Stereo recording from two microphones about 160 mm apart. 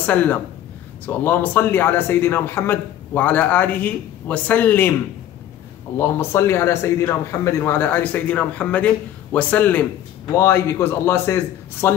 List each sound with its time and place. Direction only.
0.0 s speech: 10° left (ahead or behind)
5.9 s speech: 15° left (ahead or behind)